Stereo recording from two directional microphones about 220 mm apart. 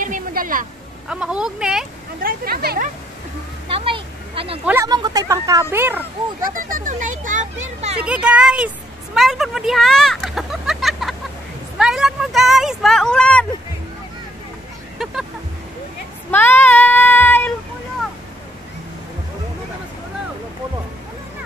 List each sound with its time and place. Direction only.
0.0 s a sound: 40° right (ahead or behind)
1.0 s speech: 5° right (ahead or behind)
2.2 s speech: 45° right (ahead or behind)
3.6 s a sound: 25° right (ahead or behind)
4.6 s speech: 15° right (ahead or behind)
6.4 s speech: 40° right (ahead or behind)
8.0 s speech: 5° right (ahead or behind)
16.3 s child singing: 10° left (ahead or behind)